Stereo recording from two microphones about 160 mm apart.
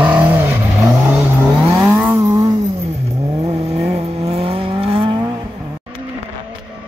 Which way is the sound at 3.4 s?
40° right (ahead or behind).